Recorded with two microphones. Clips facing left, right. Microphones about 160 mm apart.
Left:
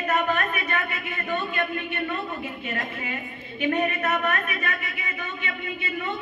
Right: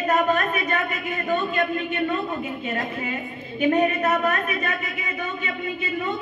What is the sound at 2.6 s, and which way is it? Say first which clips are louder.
A woman's voice: right 3 dB; 35° right (ahead or behind).